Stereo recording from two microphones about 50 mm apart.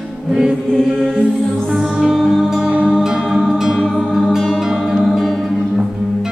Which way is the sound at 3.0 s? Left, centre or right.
Centre.